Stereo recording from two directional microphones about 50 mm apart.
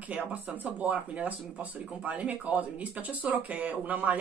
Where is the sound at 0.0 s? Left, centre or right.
Right.